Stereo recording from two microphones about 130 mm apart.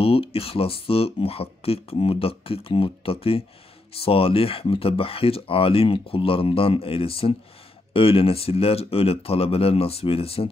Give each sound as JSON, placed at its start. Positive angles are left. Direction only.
{"t": 0.0, "sound": "speech", "side_deg": 45}